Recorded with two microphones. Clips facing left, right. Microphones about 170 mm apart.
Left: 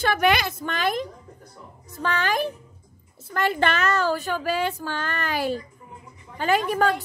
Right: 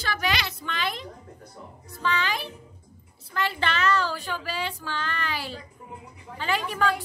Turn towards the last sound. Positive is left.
turn(degrees=50)  # may be behind; listen again after turning